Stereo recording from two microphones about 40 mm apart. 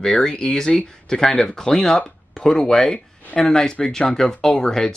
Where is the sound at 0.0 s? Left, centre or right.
Centre.